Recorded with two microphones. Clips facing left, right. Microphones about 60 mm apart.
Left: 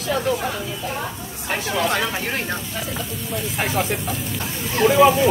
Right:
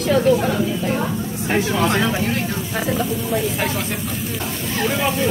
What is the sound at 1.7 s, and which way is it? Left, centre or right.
Speech, centre.